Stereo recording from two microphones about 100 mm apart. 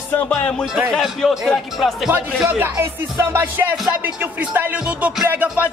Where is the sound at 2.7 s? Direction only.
30° right (ahead or behind).